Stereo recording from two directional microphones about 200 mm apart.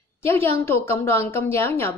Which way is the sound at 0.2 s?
10° left (ahead or behind).